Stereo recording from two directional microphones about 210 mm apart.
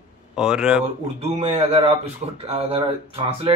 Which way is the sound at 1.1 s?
30° right (ahead or behind).